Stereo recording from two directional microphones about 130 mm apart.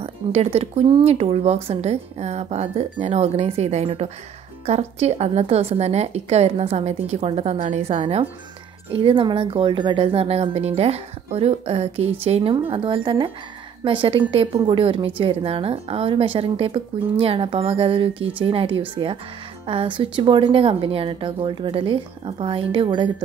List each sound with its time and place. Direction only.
0.0 s a woman's voice: 50° right (ahead or behind)
8.9 s a woman's voice: 45° right (ahead or behind)